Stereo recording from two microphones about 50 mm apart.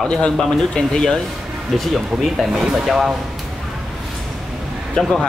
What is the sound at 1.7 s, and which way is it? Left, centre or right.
Speech, centre.